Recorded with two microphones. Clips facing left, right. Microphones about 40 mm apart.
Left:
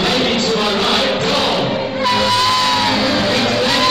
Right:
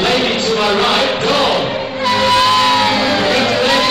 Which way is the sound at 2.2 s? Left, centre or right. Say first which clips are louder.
Right 6 dB; right.